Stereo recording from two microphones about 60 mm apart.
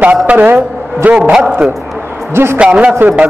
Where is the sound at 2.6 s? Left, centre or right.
Centre.